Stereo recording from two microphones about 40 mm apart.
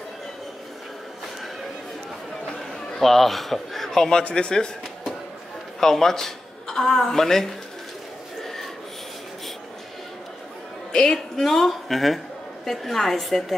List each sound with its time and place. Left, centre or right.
3.0 s speech: centre
4.2 s speech: left
5.8 s a woman's voice: centre
8.4 s a sound: centre
10.9 s a man's voice: centre